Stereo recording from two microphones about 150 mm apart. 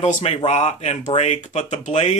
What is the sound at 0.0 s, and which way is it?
Speech, 50° left (ahead or behind).